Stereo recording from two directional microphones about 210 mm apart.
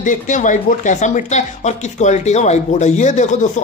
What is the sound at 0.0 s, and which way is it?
Speech, 35° left (ahead or behind).